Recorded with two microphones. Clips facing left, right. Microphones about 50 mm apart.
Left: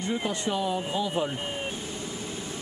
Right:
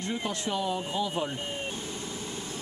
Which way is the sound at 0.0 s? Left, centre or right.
Centre.